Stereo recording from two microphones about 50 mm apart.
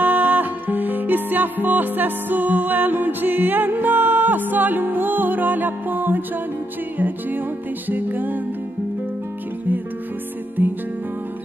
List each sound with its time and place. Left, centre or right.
0.0 s music: right
10.6 s music: right